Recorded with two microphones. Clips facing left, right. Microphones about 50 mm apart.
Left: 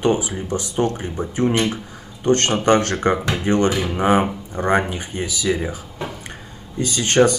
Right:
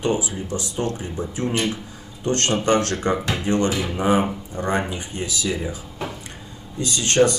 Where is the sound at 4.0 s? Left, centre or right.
Left.